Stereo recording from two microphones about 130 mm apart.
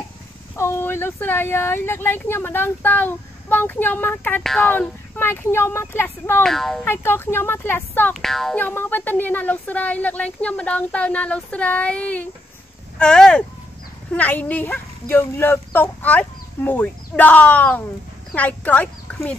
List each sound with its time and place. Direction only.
0.6 s speech: 20° left (ahead or behind)
6.4 s music: 5° left (ahead or behind)
6.8 s speech: 15° left (ahead or behind)
8.1 s music: 5° left (ahead or behind)
8.5 s speech: 15° left (ahead or behind)